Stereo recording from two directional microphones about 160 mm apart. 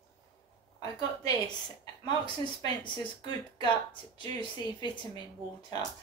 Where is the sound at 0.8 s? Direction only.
25° left (ahead or behind).